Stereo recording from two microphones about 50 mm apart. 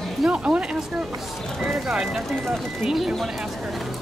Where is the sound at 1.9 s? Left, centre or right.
Centre.